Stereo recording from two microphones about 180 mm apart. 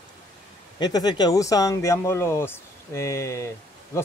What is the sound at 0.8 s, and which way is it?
Speech, 20° left (ahead or behind).